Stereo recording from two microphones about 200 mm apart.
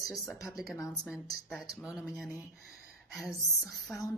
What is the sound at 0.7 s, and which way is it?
Speech, 15° left (ahead or behind).